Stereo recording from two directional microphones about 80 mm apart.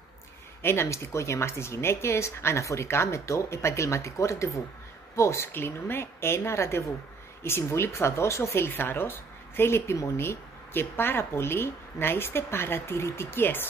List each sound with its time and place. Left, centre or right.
0.6 s speech: left